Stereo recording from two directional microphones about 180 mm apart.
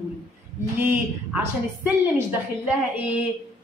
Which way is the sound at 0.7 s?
10° right (ahead or behind).